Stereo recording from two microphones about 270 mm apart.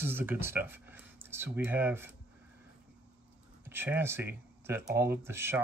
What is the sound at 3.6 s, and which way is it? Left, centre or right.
Speech, centre.